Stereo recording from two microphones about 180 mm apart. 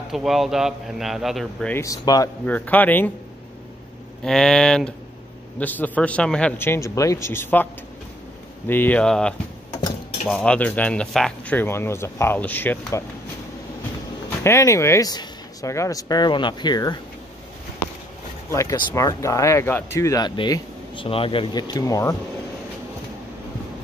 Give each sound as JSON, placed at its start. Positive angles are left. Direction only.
{"t": 0.1, "sound": "a man's voice", "side_deg": 0}
{"t": 1.8, "sound": "speech", "side_deg": 20}
{"t": 2.4, "sound": "speech", "side_deg": 10}
{"t": 4.2, "sound": "a man's voice", "side_deg": 5}
{"t": 8.6, "sound": "speech", "side_deg": 10}
{"t": 9.7, "sound": "stir", "side_deg": 20}
{"t": 10.2, "sound": "speech", "side_deg": 5}
{"t": 14.4, "sound": "speech", "side_deg": 15}
{"t": 18.5, "sound": "speech", "side_deg": 15}